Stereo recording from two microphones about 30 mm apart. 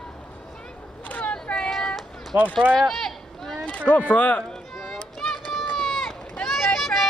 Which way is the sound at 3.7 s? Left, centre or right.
Left.